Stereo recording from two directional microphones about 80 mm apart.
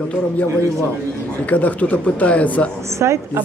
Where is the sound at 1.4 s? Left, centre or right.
Centre.